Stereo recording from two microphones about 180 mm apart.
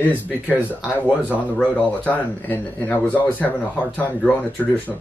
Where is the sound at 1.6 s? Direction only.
10° left (ahead or behind).